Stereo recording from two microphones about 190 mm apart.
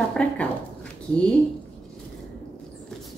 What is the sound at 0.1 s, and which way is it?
Speech, 5° left (ahead or behind).